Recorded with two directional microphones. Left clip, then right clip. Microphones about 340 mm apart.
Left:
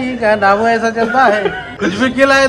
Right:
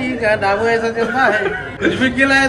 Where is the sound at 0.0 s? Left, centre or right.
Left.